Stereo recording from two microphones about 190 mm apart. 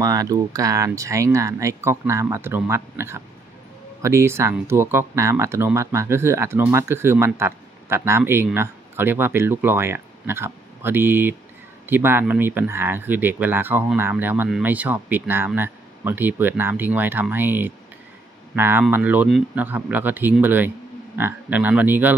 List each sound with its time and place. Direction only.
0.0 s speech: 20° right (ahead or behind)